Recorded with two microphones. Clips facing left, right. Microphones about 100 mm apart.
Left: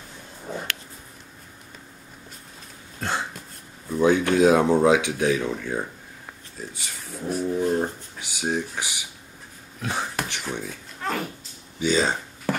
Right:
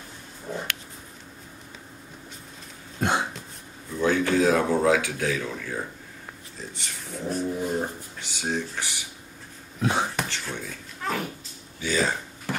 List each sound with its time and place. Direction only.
3.0 s throat clearing: 15° right (ahead or behind)
3.9 s speech: 20° left (ahead or behind)
6.7 s speech: 5° left (ahead or behind)
9.8 s speech: 20° right (ahead or behind)
10.2 s speech: 15° left (ahead or behind)
11.0 s a sound: centre (ahead or behind)
11.8 s speech: 25° left (ahead or behind)